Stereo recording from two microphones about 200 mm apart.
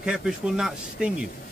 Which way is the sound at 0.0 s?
5° right (ahead or behind).